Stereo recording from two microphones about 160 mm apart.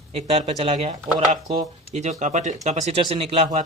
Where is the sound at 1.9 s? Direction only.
45° right (ahead or behind).